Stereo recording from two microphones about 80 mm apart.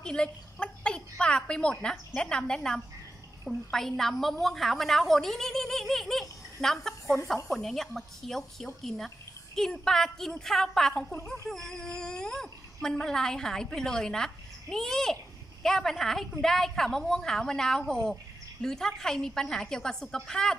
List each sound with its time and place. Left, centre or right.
0.0 s a woman's voice: centre